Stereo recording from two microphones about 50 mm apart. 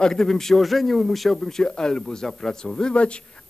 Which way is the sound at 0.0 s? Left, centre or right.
Centre.